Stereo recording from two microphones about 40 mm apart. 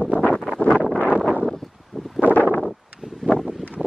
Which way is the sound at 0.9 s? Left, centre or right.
Right.